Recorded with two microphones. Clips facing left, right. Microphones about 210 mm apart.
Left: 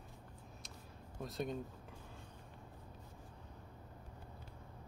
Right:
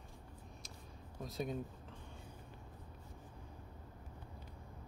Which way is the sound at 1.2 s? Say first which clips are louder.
Even; centre (ahead or behind).